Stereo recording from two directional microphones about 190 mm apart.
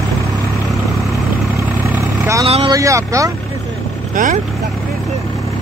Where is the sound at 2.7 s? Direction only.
15° right (ahead or behind).